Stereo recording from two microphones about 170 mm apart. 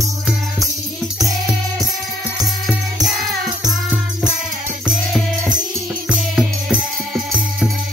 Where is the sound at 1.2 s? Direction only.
Centre (ahead or behind).